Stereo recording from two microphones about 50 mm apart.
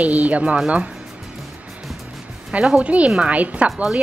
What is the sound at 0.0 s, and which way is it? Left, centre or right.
Speech, right.